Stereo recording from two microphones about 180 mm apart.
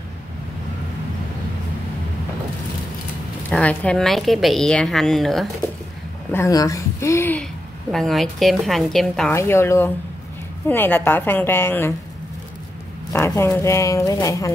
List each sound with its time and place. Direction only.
3.4 s a woman's voice: 5° left (ahead or behind)
6.3 s a woman's voice: 20° left (ahead or behind)
7.9 s a woman's voice: centre (ahead or behind)
9.3 s a woman's voice: 15° left (ahead or behind)
13.1 s a woman's voice: 15° left (ahead or behind)